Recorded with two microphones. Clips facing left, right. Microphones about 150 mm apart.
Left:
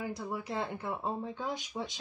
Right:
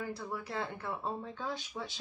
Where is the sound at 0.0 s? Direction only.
15° left (ahead or behind).